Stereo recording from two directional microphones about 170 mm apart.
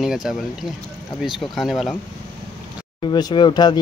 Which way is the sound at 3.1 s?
25° left (ahead or behind).